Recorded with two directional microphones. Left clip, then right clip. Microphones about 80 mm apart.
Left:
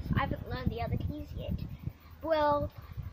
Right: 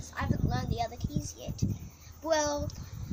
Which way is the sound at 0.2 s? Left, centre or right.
Centre.